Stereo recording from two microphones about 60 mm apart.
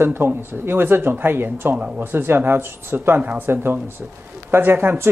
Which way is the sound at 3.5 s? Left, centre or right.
Right.